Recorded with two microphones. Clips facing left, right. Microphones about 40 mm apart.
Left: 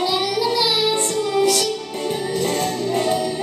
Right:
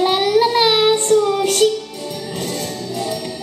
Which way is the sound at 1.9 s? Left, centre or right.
Left.